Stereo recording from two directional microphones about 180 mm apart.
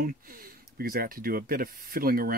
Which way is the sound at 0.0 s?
55° right (ahead or behind).